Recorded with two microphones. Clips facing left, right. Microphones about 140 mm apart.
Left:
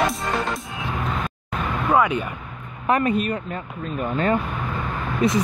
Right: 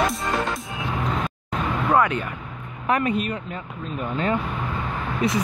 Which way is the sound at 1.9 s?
10° left (ahead or behind).